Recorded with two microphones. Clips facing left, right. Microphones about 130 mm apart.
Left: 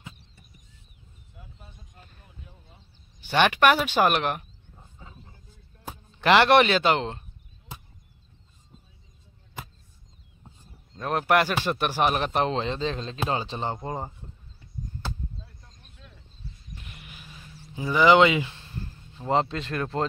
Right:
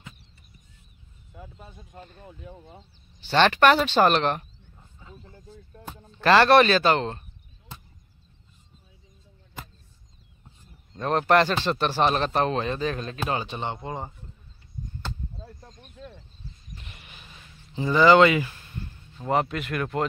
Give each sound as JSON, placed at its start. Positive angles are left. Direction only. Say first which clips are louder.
{"t": 1.3, "sound": "speech", "louder": "right 7 dB", "side_deg": -80}
{"t": 3.2, "sound": "speech", "louder": "right 2 dB", "side_deg": 15}
{"t": 6.2, "sound": "speech", "louder": "right 1 dB", "side_deg": 15}
{"t": 11.0, "sound": "speech", "louder": "right 2 dB", "side_deg": 5}
{"t": 15.3, "sound": "a sound", "louder": "right 5 dB", "side_deg": -45}
{"t": 16.8, "sound": "a sound", "louder": "left 2 dB", "side_deg": 5}
{"t": 19.2, "sound": "speech", "louder": "even", "side_deg": 25}